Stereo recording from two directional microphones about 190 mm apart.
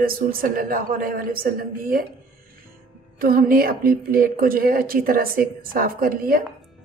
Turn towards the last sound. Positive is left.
turn(degrees=-50)  # may be behind; listen again after turning